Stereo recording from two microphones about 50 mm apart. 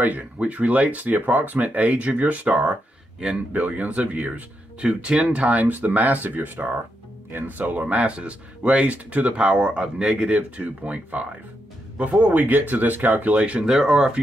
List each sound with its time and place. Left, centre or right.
0.4 s speech: right
3.5 s speech: right
13.7 s speech: centre